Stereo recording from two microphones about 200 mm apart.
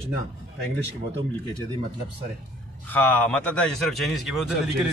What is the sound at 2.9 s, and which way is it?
A man's voice, 10° left (ahead or behind).